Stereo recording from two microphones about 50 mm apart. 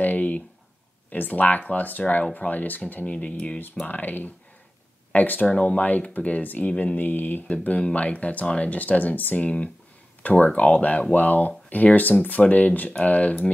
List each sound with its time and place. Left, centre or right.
0.0 s a sound: left
1.1 s speech: left
3.8 s speech: left
7.0 s speech: left
7.9 s speech: left